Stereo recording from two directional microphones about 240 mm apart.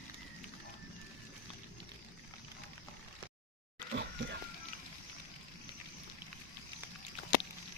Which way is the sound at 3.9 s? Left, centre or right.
Right.